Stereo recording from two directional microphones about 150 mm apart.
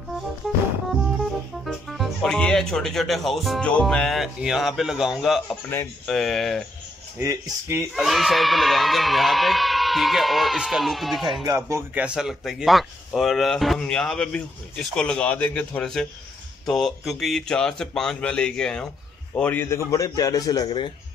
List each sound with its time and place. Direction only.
1.6 s speech: centre (ahead or behind)
7.2 s speech: 20° right (ahead or behind)
7.9 s speech: centre (ahead or behind)
11.4 s a man's voice: 20° right (ahead or behind); by 20.9 s 30° left (ahead or behind)